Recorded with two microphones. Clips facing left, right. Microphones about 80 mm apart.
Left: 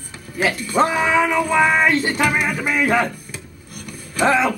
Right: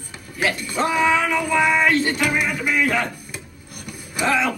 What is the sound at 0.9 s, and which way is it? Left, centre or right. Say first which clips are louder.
Music: left 2 dB; left.